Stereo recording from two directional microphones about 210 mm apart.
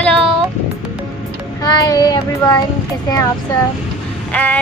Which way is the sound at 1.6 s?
20° left (ahead or behind).